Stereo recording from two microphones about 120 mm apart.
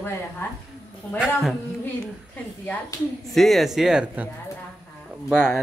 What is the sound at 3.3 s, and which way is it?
Speech, centre (ahead or behind).